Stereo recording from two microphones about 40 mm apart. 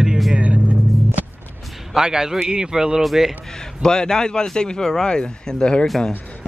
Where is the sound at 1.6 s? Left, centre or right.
Centre.